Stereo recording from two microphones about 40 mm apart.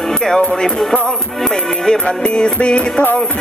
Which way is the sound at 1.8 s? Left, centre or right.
Left.